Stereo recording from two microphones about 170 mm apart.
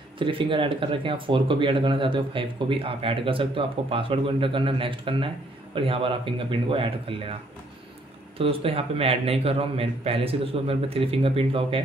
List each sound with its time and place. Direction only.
0.2 s speech: 30° right (ahead or behind)
8.4 s speech: 35° right (ahead or behind)